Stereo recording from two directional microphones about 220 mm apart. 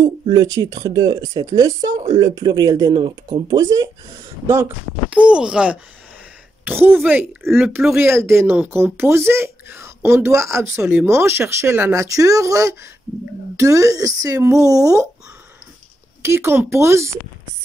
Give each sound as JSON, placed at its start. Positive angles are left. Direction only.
{"t": 0.0, "sound": "speech", "side_deg": -15}
{"t": 5.1, "sound": "speech", "side_deg": -5}
{"t": 16.3, "sound": "speech", "side_deg": -10}